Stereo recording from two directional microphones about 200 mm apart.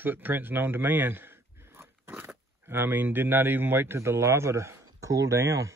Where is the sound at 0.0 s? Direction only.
10° right (ahead or behind).